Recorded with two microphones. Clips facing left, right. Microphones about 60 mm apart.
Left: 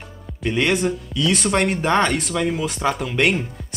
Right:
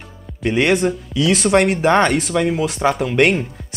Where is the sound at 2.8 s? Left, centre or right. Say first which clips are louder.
Right 4 dB; right.